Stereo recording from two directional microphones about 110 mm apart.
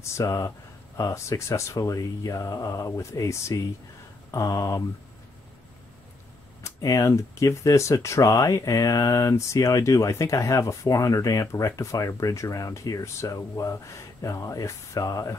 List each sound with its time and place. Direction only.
0.0 s speech: 25° left (ahead or behind)
6.6 s speech: 30° left (ahead or behind)